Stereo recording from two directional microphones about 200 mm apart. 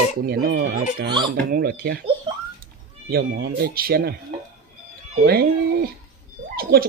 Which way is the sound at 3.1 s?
50° right (ahead or behind).